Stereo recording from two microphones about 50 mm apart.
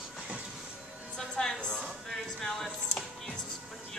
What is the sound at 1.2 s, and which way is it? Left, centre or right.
Speech, centre.